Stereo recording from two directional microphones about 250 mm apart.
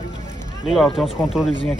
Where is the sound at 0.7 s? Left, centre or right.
Centre.